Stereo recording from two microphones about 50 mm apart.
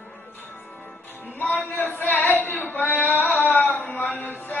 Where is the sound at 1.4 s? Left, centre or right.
Left.